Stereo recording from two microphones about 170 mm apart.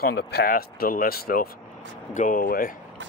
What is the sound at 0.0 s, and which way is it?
Speech, 70° left (ahead or behind).